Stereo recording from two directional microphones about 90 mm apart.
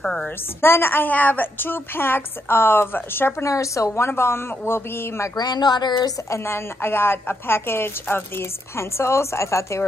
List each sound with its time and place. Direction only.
0.0 s a woman's voice: 5° left (ahead or behind)
0.6 s a woman's voice: 25° left (ahead or behind)
3.4 s a woman's voice: 35° left (ahead or behind)
5.3 s speech: 50° left (ahead or behind)
6.3 s a woman's voice: 25° left (ahead or behind)